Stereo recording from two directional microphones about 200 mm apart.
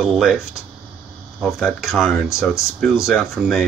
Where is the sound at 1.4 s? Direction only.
Centre (ahead or behind).